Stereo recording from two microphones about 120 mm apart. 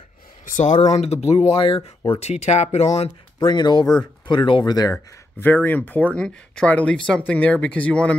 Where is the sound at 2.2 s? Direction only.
65° left (ahead or behind).